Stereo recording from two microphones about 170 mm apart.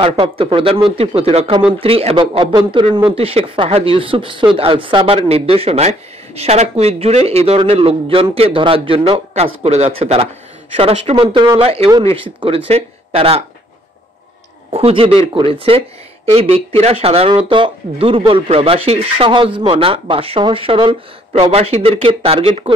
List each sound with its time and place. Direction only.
0.0 s speech: 30° right (ahead or behind)
14.7 s speech: 35° right (ahead or behind)